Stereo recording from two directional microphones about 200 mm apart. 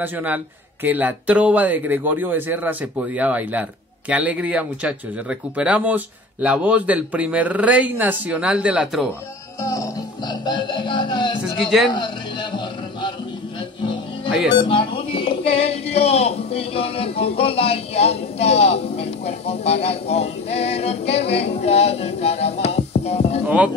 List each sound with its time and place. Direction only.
0.0 s speech: 10° right (ahead or behind)
9.6 s music: 15° left (ahead or behind)
11.6 s speech: centre (ahead or behind)
11.9 s a sound: 25° left (ahead or behind)
14.6 s speech: 25° left (ahead or behind)
23.4 s speech: 5° right (ahead or behind)